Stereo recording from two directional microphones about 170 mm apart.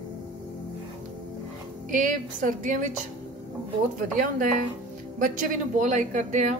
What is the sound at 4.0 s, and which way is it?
A woman's voice, 50° right (ahead or behind).